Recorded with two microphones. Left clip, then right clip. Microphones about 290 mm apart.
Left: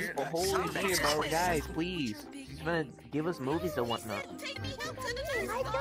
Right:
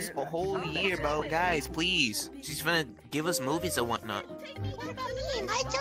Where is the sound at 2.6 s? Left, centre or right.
Right.